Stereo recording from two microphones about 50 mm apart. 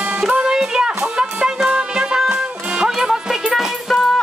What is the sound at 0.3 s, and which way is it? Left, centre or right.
Music, centre.